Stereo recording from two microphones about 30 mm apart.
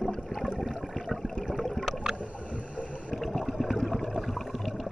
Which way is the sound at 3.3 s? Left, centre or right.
Centre.